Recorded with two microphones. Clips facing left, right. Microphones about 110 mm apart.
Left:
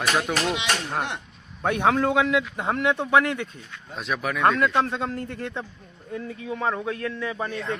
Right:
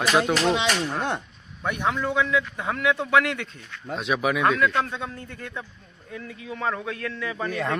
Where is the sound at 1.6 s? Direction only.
60° left (ahead or behind).